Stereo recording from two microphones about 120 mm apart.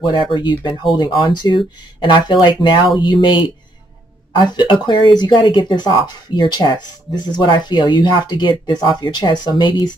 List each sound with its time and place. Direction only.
0.0 s speech: 40° left (ahead or behind)